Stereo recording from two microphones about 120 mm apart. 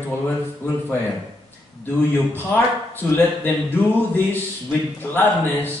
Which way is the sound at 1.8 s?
15° left (ahead or behind).